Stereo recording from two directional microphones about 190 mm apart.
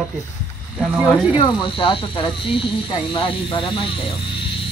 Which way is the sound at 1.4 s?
30° left (ahead or behind).